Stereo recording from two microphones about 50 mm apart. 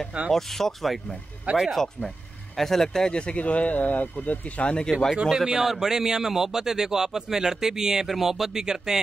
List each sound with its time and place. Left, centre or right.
0.3 s speech: centre
1.5 s speech: right
2.5 s speech: centre
5.2 s a man's voice: centre